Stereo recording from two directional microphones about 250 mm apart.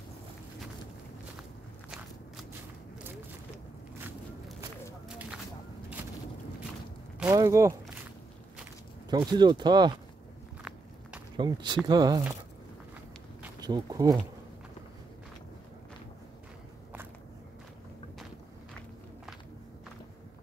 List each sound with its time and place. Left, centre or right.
4.0 s walk: centre
5.0 s a sound: centre
7.2 s speech: centre
9.1 s speech: centre
10.6 s walk: centre
11.3 s speech: centre
13.6 s speech: centre